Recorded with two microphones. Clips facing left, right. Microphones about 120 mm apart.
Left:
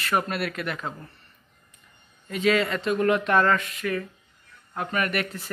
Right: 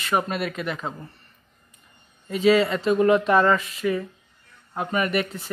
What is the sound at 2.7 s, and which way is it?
Speech, centre (ahead or behind).